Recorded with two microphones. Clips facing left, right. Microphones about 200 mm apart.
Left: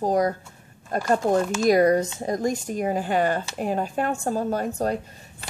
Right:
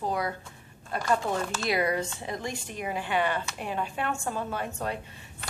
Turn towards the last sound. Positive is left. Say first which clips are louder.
# left 8 dB
turn(degrees=40)  # may be behind; listen again after turning